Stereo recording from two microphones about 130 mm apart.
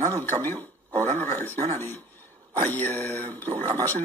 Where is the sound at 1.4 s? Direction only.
15° left (ahead or behind).